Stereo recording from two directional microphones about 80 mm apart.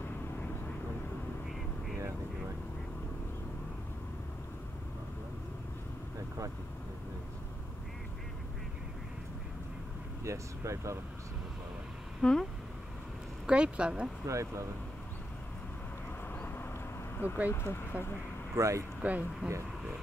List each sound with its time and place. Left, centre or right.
10.2 s speech: right
12.2 s a sound: centre
13.5 s speech: centre
14.2 s speech: right
16.3 s vehicle: left
17.5 s speech: left
18.6 s speech: right
19.0 s speech: centre